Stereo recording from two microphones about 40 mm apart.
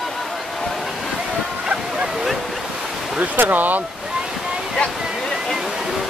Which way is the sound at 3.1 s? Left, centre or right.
Right.